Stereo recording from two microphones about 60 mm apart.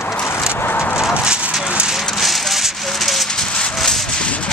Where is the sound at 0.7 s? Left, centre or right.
Left.